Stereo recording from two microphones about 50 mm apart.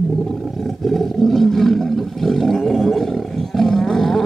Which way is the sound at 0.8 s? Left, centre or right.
Centre.